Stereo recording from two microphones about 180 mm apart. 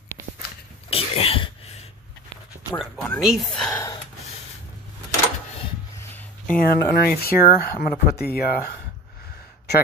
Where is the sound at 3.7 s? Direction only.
20° left (ahead or behind).